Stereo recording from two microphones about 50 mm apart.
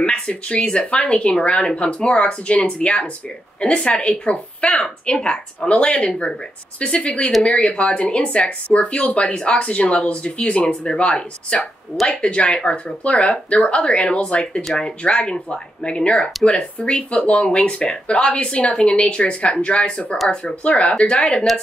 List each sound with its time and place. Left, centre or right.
0.0 s speech: left